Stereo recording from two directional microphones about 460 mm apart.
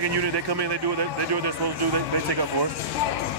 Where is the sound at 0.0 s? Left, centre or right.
Right.